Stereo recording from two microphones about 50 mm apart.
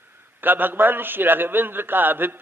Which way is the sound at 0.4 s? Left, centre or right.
Right.